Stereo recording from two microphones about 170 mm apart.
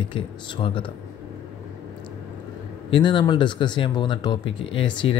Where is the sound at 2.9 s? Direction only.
25° left (ahead or behind).